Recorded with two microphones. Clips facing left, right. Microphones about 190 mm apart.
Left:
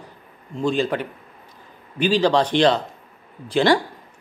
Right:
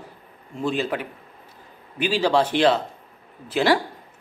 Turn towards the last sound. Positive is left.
turn(degrees=-5)  # may be behind; listen again after turning